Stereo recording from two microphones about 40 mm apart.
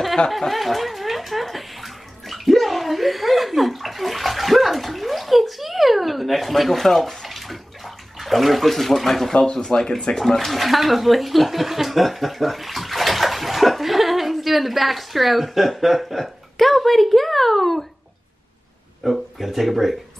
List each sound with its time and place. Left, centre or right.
0.4 s bathtub: centre
9.5 s speech: left
10.1 s speech: centre
19.0 s speech: centre